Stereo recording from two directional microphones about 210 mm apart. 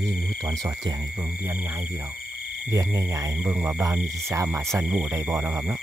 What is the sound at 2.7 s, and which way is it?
Speech, 15° right (ahead or behind).